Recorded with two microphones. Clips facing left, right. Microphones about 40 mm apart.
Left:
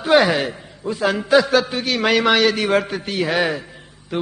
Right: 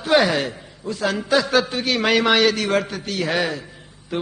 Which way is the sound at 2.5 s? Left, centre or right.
Centre.